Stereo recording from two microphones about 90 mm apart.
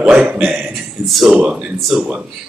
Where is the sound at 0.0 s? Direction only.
15° right (ahead or behind).